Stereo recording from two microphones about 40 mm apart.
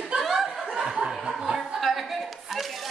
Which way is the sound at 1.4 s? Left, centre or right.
Centre.